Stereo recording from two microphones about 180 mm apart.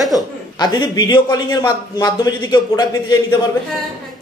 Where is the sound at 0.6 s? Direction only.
25° left (ahead or behind).